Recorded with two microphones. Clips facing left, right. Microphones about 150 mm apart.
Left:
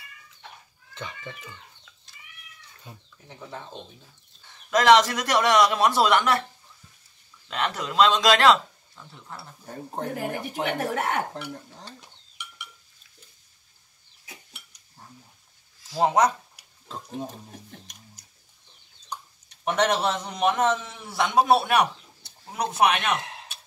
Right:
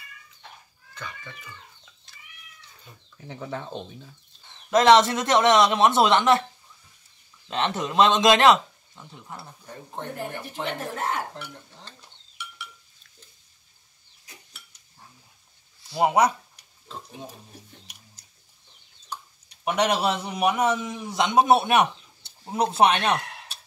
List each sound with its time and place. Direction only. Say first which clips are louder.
0.9 s speech: left 2 dB; 25° left (ahead or behind)
3.3 s speech: right 6 dB; 75° right (ahead or behind)
4.6 s a man's voice: right 1 dB; 25° right (ahead or behind)
7.4 s a man's voice: right 2 dB; 25° right (ahead or behind)
9.7 s speech: left 4 dB; 40° left (ahead or behind)
10.1 s speech: left 3 dB; 90° left
15.9 s speech: even; 10° right (ahead or behind)
16.8 s speech: left 5 dB; 45° left (ahead or behind)
17.9 s a sound: left 2 dB; 10° right (ahead or behind)
19.5 s a man's voice: even; 10° right (ahead or behind); by 23.2 s 30° right (ahead or behind)
23.2 s a sound: left 1 dB; 20° left (ahead or behind)